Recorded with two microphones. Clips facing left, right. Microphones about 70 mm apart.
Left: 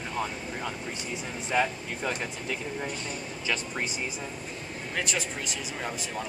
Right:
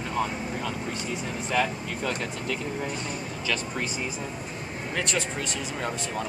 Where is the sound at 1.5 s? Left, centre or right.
Centre.